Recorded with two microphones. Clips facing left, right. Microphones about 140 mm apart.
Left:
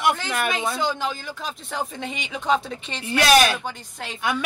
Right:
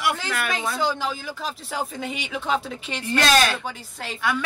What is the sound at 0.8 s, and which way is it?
Speech, 5° right (ahead or behind).